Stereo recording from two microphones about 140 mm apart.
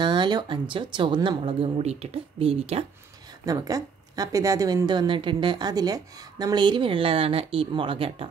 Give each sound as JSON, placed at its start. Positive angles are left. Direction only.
{"t": 0.0, "sound": "a woman's voice", "side_deg": -35}
{"t": 3.4, "sound": "a woman's voice", "side_deg": -25}